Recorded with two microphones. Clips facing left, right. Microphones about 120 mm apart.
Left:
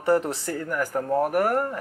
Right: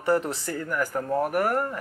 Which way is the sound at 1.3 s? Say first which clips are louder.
Left 2 dB; 45° left (ahead or behind).